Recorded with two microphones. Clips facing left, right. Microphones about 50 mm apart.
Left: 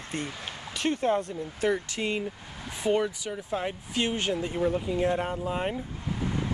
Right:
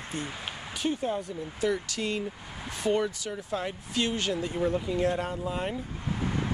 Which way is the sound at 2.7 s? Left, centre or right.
Centre.